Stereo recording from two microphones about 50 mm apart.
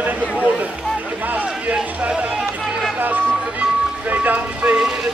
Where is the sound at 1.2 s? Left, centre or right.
Right.